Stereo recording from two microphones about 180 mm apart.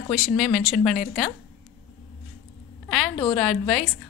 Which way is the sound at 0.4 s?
Centre (ahead or behind).